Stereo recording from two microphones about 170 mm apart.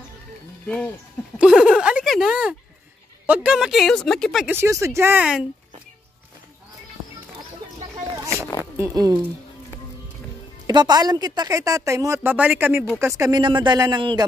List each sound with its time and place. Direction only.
1.4 s speech: 5° right (ahead or behind)
4.5 s speech: 15° right (ahead or behind)
8.7 s a woman's voice: 20° right (ahead or behind)
10.7 s a woman's voice: 25° right (ahead or behind)